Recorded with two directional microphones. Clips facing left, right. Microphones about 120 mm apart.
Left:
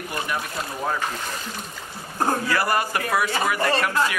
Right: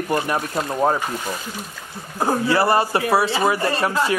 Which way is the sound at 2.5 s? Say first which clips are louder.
Right 5 dB; 30° right (ahead or behind).